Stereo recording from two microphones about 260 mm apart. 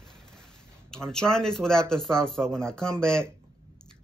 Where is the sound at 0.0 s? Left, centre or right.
Centre.